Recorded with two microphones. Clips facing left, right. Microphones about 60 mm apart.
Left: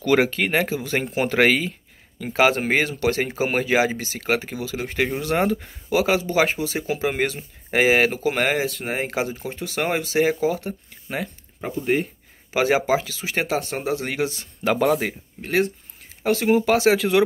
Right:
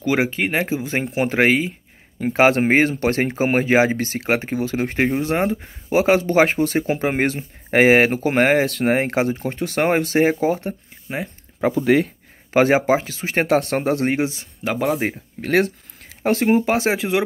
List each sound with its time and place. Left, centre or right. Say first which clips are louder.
0.0 s speech: left 1 dB; centre
2.1 s speech: right 3 dB; right
5.2 s speech: right 1 dB; right
8.6 s speech: right 7 dB; right
11.6 s speech: right 6 dB; right
12.5 s speech: right 4 dB; right
13.6 s speech: right 5 dB; right
14.0 s speech: right 5 dB; right
14.6 s speech: left 2 dB; centre
15.4 s speech: right 3 dB; right
16.4 s speech: left 2 dB; right